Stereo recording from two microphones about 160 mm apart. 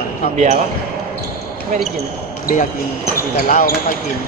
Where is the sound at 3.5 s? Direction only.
65° left (ahead or behind).